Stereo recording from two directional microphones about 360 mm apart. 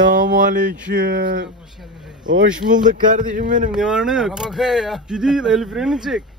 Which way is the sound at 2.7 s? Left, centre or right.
Right.